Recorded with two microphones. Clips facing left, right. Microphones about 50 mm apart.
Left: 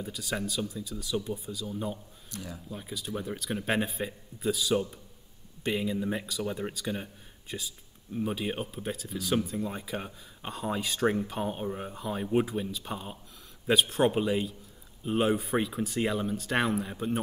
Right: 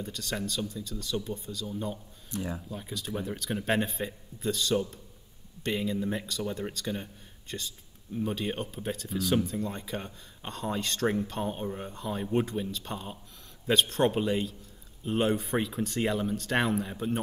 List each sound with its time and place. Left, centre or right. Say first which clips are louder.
0.0 s speech: left 1 dB; centre
2.3 s speech: right 7 dB; right
2.7 s speech: right 1 dB; centre